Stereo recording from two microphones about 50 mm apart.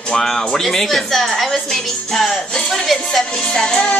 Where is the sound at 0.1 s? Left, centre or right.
Centre.